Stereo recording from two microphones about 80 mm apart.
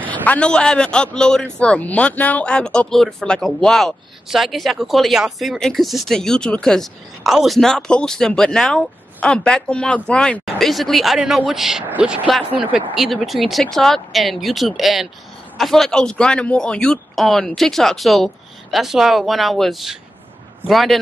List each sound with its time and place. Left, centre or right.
0.0 s a man's voice: centre
10.4 s a man's voice: centre